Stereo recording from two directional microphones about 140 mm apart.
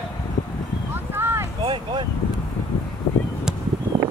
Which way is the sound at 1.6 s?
35° right (ahead or behind).